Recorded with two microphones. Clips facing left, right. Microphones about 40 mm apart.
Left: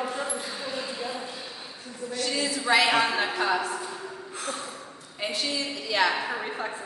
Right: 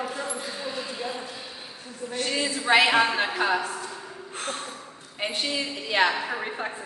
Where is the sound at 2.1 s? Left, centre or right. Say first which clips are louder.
Right 1 dB; right.